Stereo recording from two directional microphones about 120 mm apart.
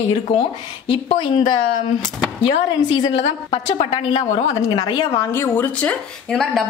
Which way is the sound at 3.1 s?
50° left (ahead or behind).